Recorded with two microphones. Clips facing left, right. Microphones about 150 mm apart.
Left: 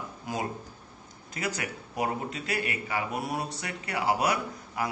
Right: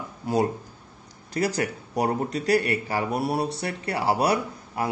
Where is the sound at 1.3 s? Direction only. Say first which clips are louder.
Right 8 dB; 35° right (ahead or behind).